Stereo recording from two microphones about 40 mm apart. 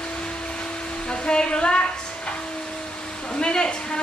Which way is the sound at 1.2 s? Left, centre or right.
Left.